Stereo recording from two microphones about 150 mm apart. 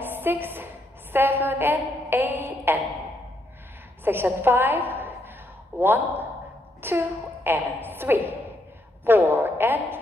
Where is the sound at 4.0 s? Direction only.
15° right (ahead or behind).